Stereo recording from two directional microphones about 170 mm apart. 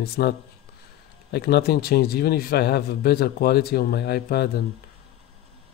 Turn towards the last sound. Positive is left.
turn(degrees=70)  # may be behind; listen again after turning